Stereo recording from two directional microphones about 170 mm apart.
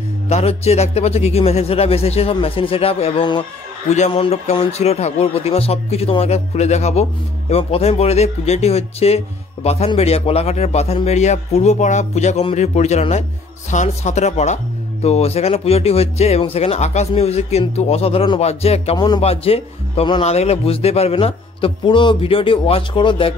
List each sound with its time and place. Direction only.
0.3 s a man's voice: 35° left (ahead or behind)
18.9 s a man's voice: 25° left (ahead or behind)